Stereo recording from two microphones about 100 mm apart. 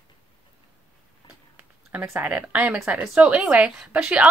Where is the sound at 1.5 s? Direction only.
20° right (ahead or behind).